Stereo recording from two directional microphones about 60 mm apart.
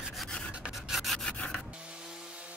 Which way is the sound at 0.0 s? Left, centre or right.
Centre.